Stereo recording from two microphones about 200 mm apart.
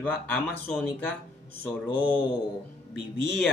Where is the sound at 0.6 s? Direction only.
10° left (ahead or behind).